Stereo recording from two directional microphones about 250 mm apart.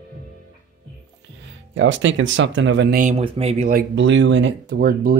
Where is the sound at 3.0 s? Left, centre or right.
Right.